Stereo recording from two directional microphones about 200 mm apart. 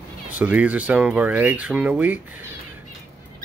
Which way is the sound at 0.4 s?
10° right (ahead or behind).